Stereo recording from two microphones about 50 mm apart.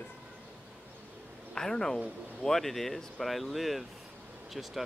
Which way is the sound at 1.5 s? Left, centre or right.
Centre.